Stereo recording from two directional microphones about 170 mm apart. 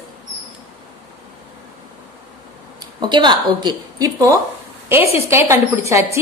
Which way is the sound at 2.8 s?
25° right (ahead or behind).